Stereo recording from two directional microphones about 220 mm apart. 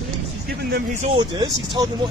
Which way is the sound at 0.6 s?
50° right (ahead or behind).